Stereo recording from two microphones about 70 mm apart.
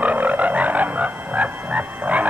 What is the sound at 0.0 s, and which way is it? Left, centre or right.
Frog, right.